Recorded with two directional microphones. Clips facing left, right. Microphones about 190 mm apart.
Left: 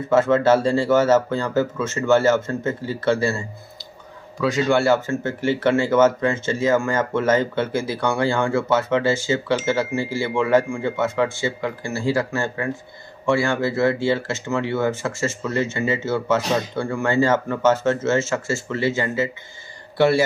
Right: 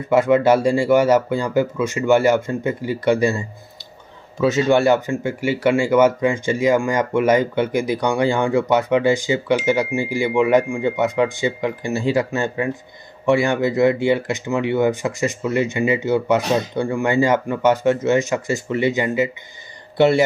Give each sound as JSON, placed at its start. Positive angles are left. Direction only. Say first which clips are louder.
{"t": 0.1, "sound": "a man's voice", "louder": "right 2 dB", "side_deg": -15}